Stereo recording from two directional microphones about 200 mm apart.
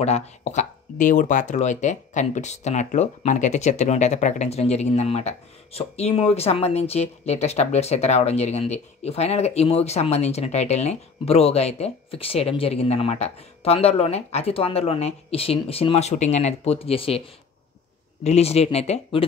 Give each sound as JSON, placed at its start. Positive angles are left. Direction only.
{"t": 0.0, "sound": "speech", "side_deg": 35}
{"t": 18.2, "sound": "speech", "side_deg": 30}